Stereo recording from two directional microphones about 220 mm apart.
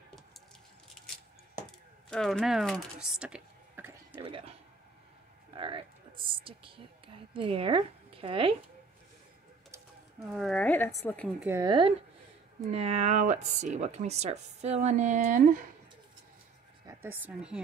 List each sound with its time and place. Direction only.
2.0 s speech: centre (ahead or behind)
4.2 s speech: 25° right (ahead or behind)
5.6 s speech: 25° right (ahead or behind)
10.3 s speech: centre (ahead or behind)
11.3 s speech: 15° right (ahead or behind); by 15.6 s 40° right (ahead or behind)
16.8 s speech: 10° right (ahead or behind)